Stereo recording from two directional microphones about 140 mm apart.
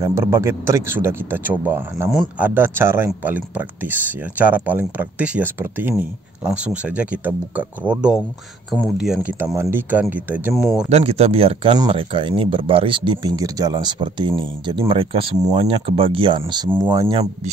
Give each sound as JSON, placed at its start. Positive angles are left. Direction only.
{"t": 0.0, "sound": "speech", "side_deg": -20}
{"t": 9.6, "sound": "speech", "side_deg": -15}
{"t": 10.5, "sound": "speech", "side_deg": 0}
{"t": 10.9, "sound": "speech", "side_deg": -50}